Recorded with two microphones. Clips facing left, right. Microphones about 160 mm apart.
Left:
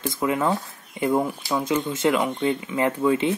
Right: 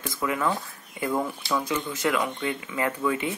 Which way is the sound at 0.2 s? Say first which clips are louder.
Left 3 dB; 25° left (ahead or behind).